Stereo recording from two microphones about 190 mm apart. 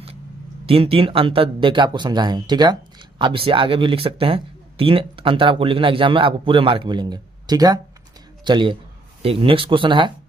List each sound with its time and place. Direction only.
0.7 s speech: 30° right (ahead or behind)